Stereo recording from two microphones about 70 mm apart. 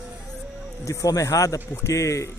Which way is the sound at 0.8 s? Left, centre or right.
Left.